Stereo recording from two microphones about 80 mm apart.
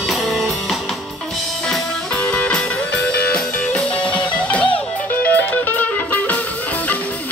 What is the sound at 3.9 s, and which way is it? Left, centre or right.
Music, centre.